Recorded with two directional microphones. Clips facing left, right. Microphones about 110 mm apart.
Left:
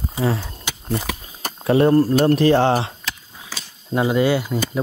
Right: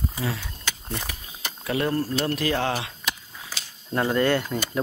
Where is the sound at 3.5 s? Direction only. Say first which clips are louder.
Left 4 dB; 90° left.